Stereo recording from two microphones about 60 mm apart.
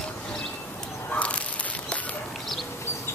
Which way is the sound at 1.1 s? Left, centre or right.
Left.